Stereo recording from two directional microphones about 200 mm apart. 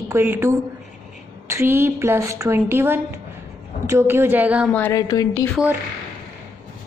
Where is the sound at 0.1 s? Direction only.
10° right (ahead or behind).